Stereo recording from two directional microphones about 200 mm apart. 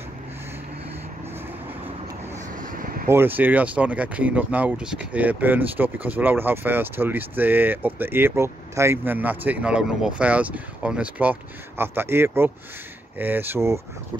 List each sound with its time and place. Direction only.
2.3 s vehicle: 45° right (ahead or behind)
3.1 s speech: 10° right (ahead or behind)